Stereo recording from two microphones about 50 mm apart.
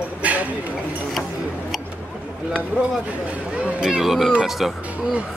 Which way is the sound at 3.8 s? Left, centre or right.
Centre.